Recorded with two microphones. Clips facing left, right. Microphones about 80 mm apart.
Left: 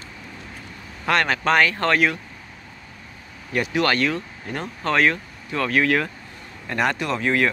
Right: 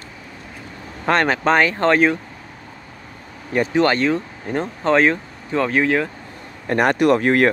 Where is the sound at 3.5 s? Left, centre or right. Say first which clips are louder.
Right 4 dB; right.